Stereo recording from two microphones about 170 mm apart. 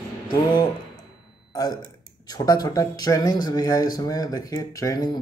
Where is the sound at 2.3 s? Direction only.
20° left (ahead or behind).